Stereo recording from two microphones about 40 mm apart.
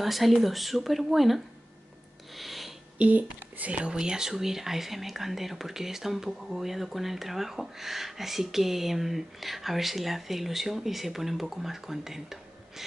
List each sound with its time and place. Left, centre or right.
0.0 s speech: centre
2.3 s a sound: centre
3.0 s speech: right
3.7 s speech: right
4.0 s speech: centre